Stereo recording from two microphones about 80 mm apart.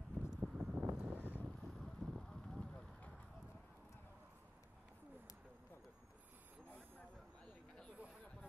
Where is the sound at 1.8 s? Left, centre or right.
Centre.